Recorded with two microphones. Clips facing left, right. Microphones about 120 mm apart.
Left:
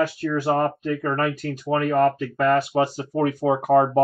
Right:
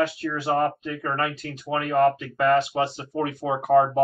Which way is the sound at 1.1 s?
35° left (ahead or behind).